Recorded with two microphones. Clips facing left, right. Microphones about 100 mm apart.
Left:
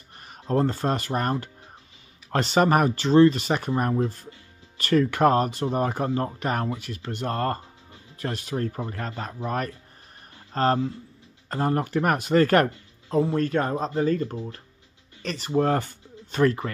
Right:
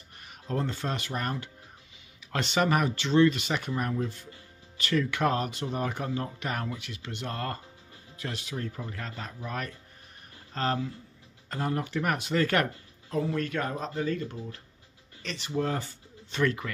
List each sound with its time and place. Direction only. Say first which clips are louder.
0.2 s speech: left 8 dB; 40° left (ahead or behind)
13.1 s speech: left 7 dB; 30° left (ahead or behind)